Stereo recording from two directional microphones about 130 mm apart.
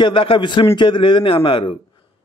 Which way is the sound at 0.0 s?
40° left (ahead or behind).